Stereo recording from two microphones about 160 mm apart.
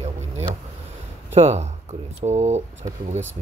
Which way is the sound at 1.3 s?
45° right (ahead or behind).